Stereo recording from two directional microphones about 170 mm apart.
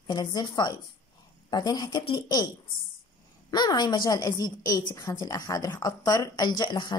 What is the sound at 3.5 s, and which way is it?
A woman's voice, 25° left (ahead or behind).